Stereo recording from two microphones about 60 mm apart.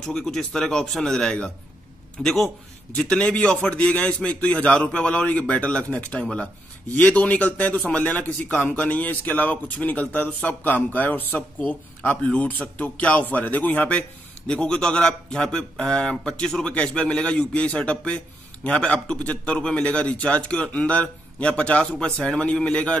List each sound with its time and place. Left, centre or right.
0.0 s a man's voice: centre
2.2 s a man's voice: centre
3.0 s a man's voice: centre